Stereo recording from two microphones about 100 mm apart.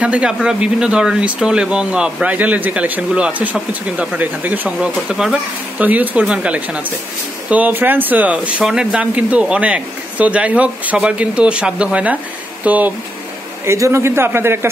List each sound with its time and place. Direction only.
0.0 s speech: 10° right (ahead or behind)
13.7 s a man's voice: 30° right (ahead or behind)